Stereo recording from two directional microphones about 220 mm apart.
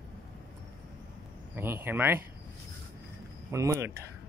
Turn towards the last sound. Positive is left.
turn(degrees=-15)  # may be behind; listen again after turning